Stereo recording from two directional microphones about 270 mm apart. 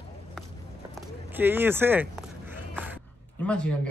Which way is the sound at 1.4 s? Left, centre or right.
Centre.